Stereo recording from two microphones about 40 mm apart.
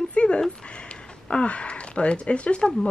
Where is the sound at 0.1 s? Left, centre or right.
Left.